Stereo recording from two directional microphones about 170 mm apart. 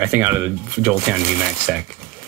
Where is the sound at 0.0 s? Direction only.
15° right (ahead or behind).